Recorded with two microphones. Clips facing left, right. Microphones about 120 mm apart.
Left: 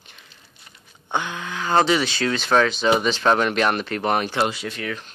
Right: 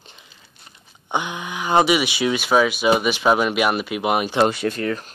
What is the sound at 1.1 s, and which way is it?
Speech, 15° right (ahead or behind).